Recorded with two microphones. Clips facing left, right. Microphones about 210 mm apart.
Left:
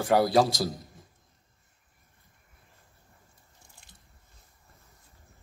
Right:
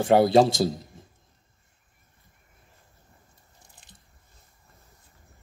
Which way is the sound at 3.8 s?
20° right (ahead or behind).